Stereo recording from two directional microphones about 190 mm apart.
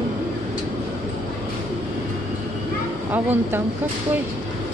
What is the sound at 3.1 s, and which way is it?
Speech, 10° right (ahead or behind).